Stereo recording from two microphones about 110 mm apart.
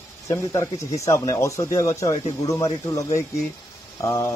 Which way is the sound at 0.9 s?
30° left (ahead or behind).